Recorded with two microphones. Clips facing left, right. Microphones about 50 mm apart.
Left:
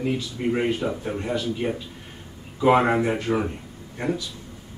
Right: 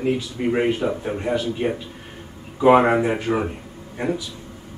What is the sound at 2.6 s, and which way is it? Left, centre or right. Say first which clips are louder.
Speech: right 4 dB; centre.